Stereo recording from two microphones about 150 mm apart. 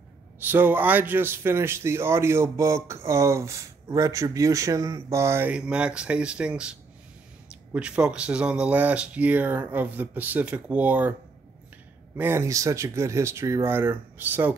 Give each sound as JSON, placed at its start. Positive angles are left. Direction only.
{"t": 0.4, "sound": "a man's voice", "side_deg": -15}
{"t": 12.2, "sound": "a man's voice", "side_deg": -15}